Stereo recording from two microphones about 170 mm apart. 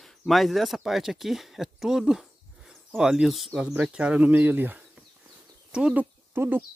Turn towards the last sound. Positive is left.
turn(degrees=-10)  # may be behind; listen again after turning